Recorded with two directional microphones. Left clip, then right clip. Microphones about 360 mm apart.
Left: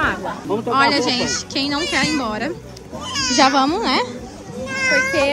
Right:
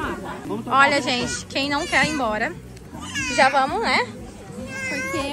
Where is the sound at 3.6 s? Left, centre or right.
Centre.